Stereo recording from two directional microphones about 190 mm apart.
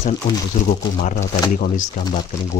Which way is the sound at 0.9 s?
40° left (ahead or behind).